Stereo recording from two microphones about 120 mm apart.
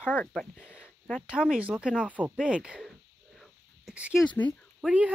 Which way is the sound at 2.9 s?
Centre (ahead or behind).